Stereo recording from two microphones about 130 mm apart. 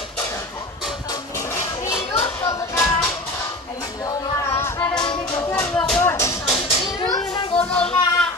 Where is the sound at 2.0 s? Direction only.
50° left (ahead or behind).